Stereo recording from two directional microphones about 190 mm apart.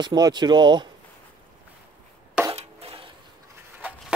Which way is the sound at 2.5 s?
30° right (ahead or behind).